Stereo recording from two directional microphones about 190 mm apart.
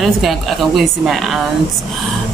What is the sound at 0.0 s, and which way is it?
Speech, centre (ahead or behind).